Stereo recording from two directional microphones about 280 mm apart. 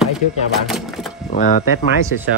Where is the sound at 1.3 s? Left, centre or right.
Left.